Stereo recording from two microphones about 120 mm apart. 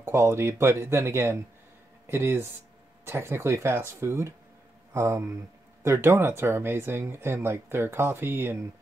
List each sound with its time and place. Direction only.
0.0 s speech: 20° right (ahead or behind)